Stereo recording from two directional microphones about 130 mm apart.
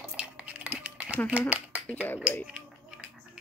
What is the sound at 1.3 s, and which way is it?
Speech, 10° right (ahead or behind).